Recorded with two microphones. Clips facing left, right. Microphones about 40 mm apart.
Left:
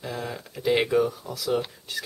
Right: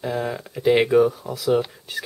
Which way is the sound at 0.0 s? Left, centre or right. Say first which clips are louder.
Right 7 dB; centre.